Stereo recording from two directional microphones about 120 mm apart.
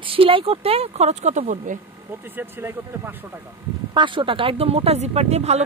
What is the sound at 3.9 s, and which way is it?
A woman's voice, 45° right (ahead or behind).